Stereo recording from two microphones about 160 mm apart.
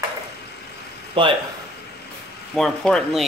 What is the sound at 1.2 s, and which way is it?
Speech, 30° right (ahead or behind).